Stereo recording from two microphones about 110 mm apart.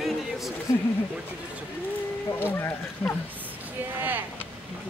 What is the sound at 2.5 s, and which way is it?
Speech, 20° left (ahead or behind).